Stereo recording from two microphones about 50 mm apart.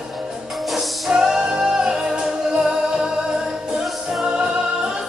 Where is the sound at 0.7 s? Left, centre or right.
Centre.